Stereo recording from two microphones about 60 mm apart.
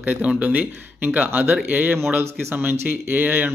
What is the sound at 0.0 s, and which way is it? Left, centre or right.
A man's voice, right.